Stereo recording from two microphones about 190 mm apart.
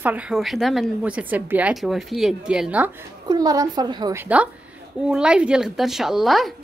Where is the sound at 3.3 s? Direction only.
20° right (ahead or behind).